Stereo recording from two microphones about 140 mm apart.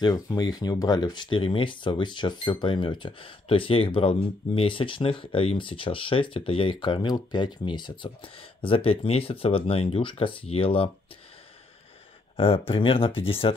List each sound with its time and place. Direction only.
0.0 s speech: 30° left (ahead or behind)
12.4 s speech: 40° left (ahead or behind)